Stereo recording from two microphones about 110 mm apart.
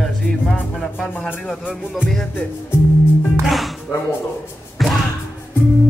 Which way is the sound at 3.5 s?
Centre (ahead or behind).